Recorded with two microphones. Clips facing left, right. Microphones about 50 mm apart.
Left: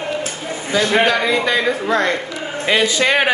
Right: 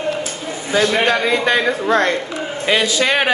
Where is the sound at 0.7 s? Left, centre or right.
Right.